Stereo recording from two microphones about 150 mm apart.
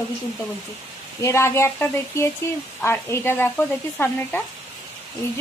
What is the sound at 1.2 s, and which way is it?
Speech, 20° left (ahead or behind).